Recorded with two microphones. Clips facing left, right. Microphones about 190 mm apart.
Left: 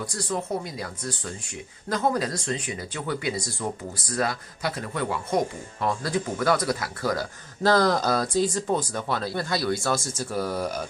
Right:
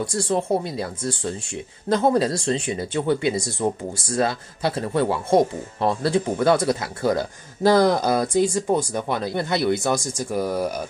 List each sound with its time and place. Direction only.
0.0 s speech: 25° right (ahead or behind)
7.6 s speech: 15° right (ahead or behind)